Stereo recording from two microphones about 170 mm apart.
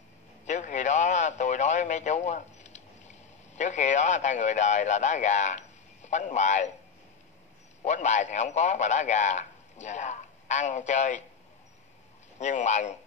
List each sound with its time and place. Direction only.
0.5 s radio: 45° left (ahead or behind)
7.8 s a man's voice: 45° left (ahead or behind)
12.4 s a man's voice: 45° left (ahead or behind)